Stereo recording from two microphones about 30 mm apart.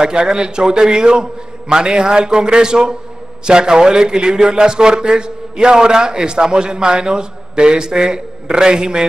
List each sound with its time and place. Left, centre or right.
0.0 s a man's voice: right